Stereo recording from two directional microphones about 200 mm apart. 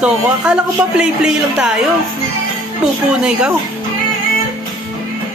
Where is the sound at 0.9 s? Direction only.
5° right (ahead or behind).